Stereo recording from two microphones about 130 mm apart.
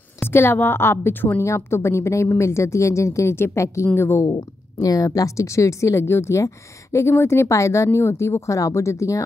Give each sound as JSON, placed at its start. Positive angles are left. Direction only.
{"t": 0.2, "sound": "a woman's voice", "side_deg": 15}